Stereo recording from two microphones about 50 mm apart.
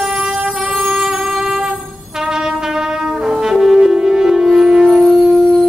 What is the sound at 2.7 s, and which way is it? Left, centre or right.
Brass instrument, centre.